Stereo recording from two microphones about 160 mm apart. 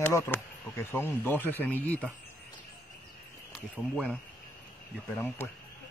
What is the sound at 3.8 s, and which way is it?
Speech, centre (ahead or behind).